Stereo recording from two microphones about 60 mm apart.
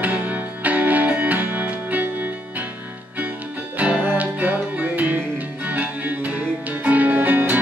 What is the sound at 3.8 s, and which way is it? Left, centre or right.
Music, right.